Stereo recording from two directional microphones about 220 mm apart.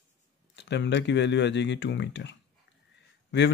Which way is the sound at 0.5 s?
55° left (ahead or behind).